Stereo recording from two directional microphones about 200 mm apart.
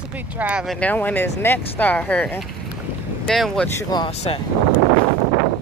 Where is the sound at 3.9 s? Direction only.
25° left (ahead or behind).